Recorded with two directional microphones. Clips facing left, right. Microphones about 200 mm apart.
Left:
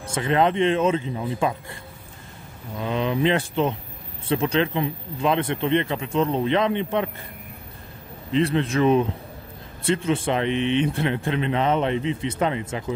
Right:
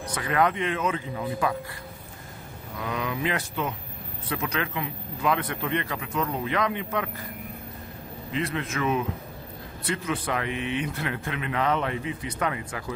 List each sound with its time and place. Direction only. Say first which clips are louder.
0.0 s speech: left 4 dB; 25° left (ahead or behind)
2.8 s speech: left 7 dB; 25° left (ahead or behind)
8.3 s a man's voice: left 8 dB; 30° left (ahead or behind)